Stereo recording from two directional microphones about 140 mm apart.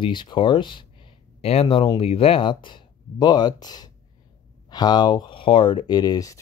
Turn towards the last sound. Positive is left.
turn(degrees=25)  # may be behind; listen again after turning